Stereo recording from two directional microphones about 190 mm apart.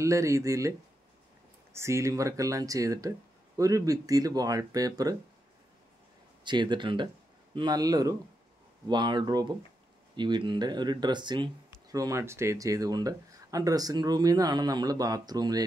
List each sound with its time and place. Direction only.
0.0 s speech: 15° right (ahead or behind)
6.4 s speech: 25° right (ahead or behind)